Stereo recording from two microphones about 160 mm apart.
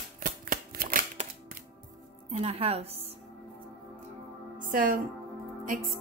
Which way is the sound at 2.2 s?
40° right (ahead or behind).